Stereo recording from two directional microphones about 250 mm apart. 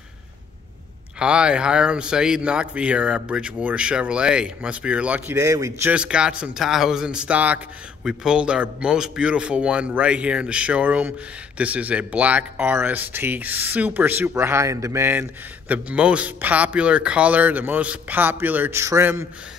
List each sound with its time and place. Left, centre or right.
1.2 s speech: centre